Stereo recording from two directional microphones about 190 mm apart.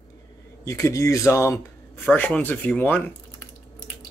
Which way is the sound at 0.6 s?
15° left (ahead or behind).